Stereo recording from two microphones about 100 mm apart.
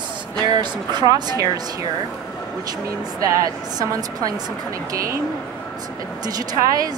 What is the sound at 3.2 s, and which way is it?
A woman's voice, 35° right (ahead or behind).